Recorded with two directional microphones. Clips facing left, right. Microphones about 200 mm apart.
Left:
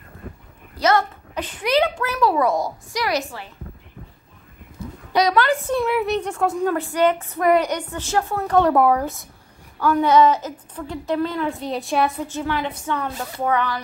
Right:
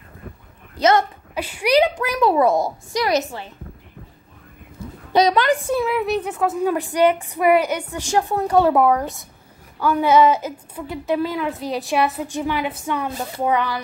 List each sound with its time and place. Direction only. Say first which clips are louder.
0.7 s a woman's voice: right 2 dB; 20° right (ahead or behind)
1.3 s a woman's voice: right 3 dB; 10° right (ahead or behind)
5.1 s a woman's voice: right 2 dB; 20° right (ahead or behind)
5.8 s speech: even; centre (ahead or behind)
12.3 s speech: right 2 dB; 15° right (ahead or behind)